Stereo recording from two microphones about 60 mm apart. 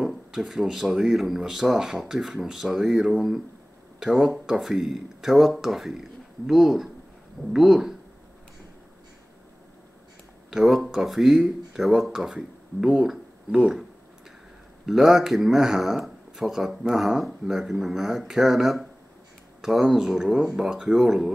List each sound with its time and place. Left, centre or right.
0.0 s speech: centre
10.5 s speech: centre
14.9 s speech: centre